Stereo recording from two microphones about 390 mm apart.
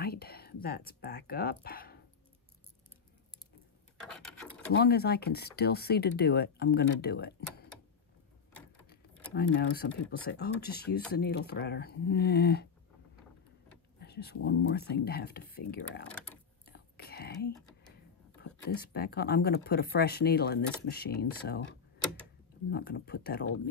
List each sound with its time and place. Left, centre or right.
0.0 s speech: left
4.7 s speech: left
9.3 s speech: left
13.9 s speech: left
16.6 s whispering: left
18.4 s speech: left
22.7 s speech: left